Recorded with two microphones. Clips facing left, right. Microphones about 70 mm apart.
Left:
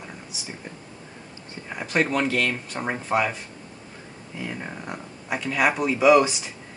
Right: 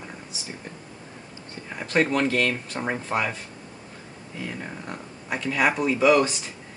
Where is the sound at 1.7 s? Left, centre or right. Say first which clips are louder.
Right 1 dB; centre.